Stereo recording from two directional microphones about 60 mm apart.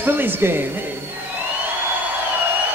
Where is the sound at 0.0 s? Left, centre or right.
Right.